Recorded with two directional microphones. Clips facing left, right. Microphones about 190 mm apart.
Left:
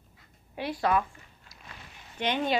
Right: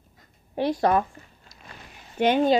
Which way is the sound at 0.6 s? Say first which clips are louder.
Right 6 dB; 40° right (ahead or behind).